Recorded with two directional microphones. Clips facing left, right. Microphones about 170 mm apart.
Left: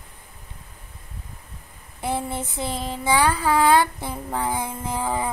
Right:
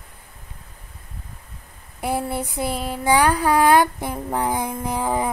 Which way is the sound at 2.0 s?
10° right (ahead or behind).